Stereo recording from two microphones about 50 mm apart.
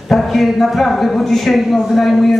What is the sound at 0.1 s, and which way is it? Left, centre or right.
A man's voice, centre.